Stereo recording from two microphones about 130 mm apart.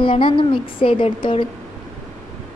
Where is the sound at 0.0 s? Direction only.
40° left (ahead or behind).